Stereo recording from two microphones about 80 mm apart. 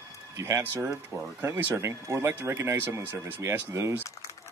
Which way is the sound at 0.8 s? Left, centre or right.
Right.